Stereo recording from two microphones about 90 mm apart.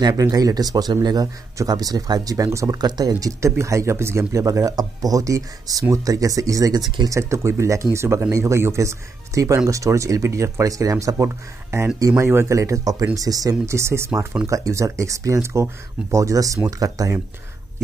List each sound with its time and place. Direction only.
0.0 s speech: 40° right (ahead or behind)